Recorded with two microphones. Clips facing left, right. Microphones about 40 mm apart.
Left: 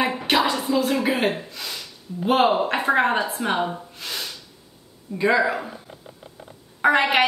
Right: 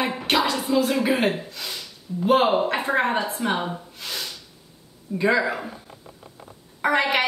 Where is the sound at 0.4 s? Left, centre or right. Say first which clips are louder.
Right 1 dB; left.